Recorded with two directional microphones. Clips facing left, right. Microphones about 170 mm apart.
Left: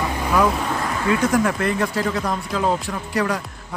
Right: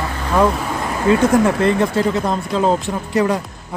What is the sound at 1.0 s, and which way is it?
Speech, 25° right (ahead or behind).